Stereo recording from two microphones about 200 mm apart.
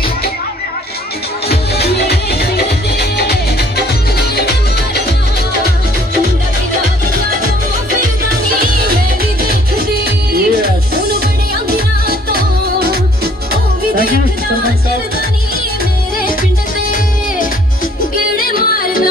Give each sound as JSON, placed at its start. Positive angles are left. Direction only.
{"t": 1.5, "sound": "music", "side_deg": 55}
{"t": 4.4, "sound": "music", "side_deg": 55}
{"t": 10.0, "sound": "music", "side_deg": -50}
{"t": 12.3, "sound": "music", "side_deg": -50}
{"t": 18.3, "sound": "music", "side_deg": 45}